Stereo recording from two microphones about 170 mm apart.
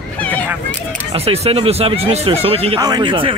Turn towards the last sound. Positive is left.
turn(degrees=-30)  # may be behind; listen again after turning